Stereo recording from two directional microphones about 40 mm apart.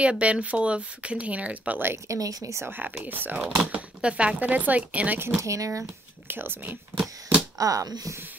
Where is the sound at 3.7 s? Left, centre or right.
Right.